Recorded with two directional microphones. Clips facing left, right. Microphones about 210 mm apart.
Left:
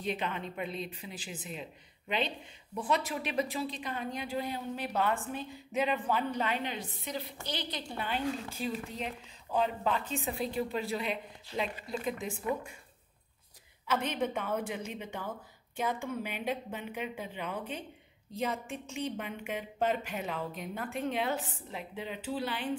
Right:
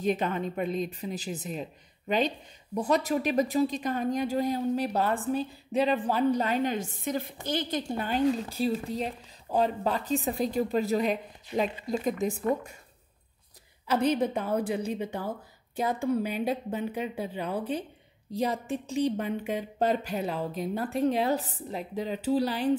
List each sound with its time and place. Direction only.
0.0 s a woman's voice: 45° right (ahead or behind)
13.8 s a woman's voice: 35° right (ahead or behind)